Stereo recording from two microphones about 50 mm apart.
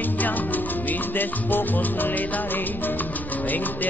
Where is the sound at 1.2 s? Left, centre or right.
Left.